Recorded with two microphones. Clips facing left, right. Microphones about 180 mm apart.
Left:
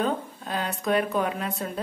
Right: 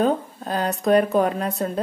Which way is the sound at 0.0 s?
40° right (ahead or behind).